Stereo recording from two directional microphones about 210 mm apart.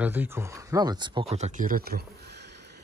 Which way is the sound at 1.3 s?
35° right (ahead or behind).